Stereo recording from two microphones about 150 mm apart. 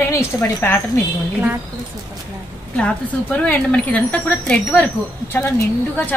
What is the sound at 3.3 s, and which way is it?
Speech, 10° left (ahead or behind).